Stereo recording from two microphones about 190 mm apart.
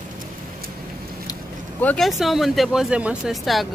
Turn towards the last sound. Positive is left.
turn(degrees=0)  # may be behind; listen again after turning